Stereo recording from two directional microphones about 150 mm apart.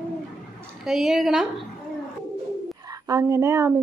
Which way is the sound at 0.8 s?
Centre (ahead or behind).